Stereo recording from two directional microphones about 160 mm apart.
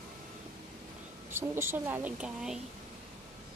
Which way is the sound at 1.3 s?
15° right (ahead or behind).